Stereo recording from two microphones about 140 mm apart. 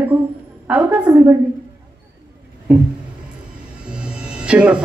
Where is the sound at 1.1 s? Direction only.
20° right (ahead or behind).